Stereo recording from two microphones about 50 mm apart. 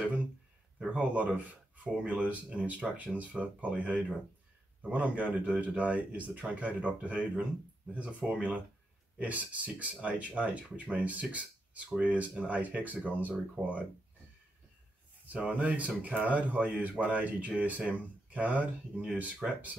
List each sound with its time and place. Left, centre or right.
0.7 s speech: right
15.2 s speech: right